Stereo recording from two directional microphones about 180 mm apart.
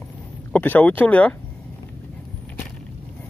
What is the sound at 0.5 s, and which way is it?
Speech, 10° left (ahead or behind).